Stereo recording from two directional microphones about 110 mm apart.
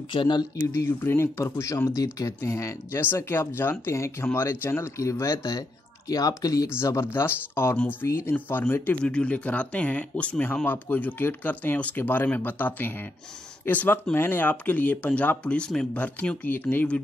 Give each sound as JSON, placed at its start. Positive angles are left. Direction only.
{"t": 0.1, "sound": "speech", "side_deg": 45}
{"t": 0.7, "sound": "speech", "side_deg": 25}